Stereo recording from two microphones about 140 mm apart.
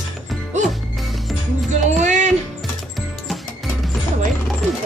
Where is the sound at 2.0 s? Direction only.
60° right (ahead or behind).